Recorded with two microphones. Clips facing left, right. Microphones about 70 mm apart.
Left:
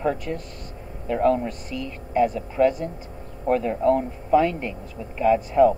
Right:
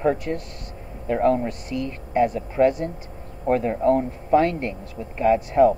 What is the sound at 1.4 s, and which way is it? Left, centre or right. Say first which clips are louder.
Speech: right 3 dB; right.